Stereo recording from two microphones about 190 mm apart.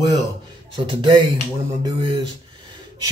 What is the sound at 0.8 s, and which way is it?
Speech, 25° right (ahead or behind).